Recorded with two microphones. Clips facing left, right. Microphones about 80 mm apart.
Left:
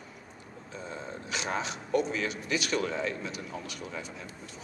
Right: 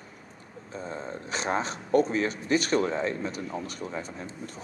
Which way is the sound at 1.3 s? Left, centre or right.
Right.